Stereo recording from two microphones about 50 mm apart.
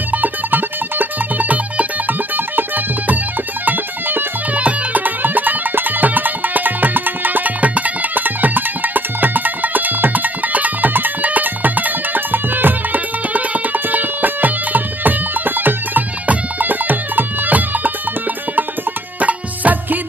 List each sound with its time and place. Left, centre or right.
0.1 s music: right
19.1 s music: right